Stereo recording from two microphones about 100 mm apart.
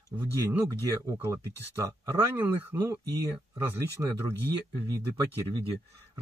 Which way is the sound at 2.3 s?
30° right (ahead or behind).